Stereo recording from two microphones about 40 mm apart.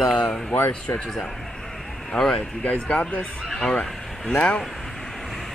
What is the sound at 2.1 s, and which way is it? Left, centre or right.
Speech, left.